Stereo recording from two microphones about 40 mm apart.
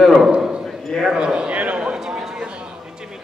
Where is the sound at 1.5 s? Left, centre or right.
Right.